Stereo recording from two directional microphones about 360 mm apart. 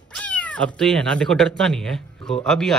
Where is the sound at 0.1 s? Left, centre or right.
Centre.